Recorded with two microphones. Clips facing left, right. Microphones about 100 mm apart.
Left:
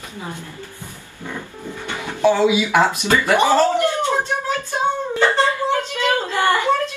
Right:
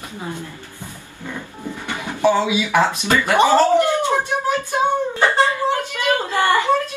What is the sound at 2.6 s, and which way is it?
Speech, 20° left (ahead or behind).